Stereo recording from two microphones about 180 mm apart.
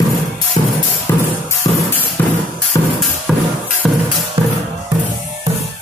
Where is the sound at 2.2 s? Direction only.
10° left (ahead or behind).